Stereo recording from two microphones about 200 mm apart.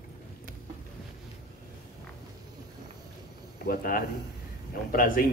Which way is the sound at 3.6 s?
45° left (ahead or behind).